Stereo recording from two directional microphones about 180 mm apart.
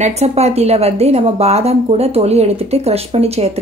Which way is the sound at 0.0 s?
35° right (ahead or behind).